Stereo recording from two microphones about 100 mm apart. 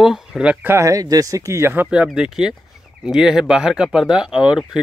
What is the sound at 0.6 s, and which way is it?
Speech, 30° right (ahead or behind).